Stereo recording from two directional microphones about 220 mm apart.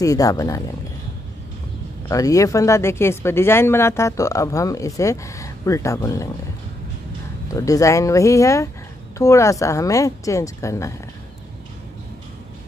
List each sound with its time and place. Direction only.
0.0 s speech: 15° left (ahead or behind)
2.0 s speech: 15° left (ahead or behind)
7.5 s speech: 15° left (ahead or behind)